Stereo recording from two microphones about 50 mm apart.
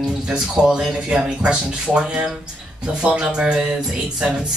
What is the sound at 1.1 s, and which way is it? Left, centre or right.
Speech, right.